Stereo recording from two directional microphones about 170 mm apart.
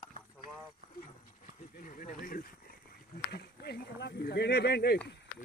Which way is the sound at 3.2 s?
70° left (ahead or behind).